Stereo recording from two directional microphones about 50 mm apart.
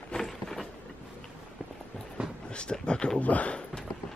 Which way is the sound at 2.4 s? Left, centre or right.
Centre.